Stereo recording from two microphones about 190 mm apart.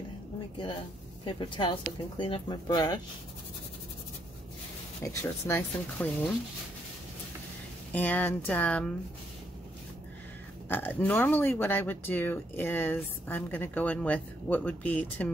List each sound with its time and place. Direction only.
1.2 s speech: 25° left (ahead or behind)
5.0 s speech: 10° left (ahead or behind)
7.9 s speech: 10° left (ahead or behind)
10.7 s speech: 10° left (ahead or behind)